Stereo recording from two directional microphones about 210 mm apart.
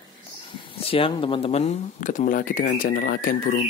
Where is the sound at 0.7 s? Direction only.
25° left (ahead or behind).